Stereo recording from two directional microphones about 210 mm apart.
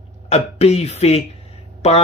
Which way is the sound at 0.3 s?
30° left (ahead or behind).